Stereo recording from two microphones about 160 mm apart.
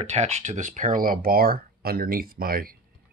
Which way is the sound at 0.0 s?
45° right (ahead or behind).